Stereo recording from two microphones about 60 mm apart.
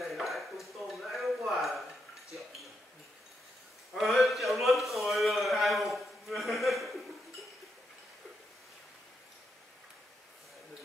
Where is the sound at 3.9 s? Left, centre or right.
Centre.